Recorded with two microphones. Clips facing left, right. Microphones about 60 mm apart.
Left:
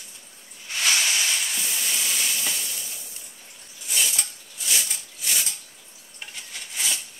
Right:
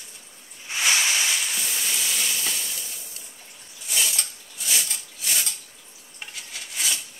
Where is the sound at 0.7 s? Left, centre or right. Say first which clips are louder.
Right 1 dB; centre.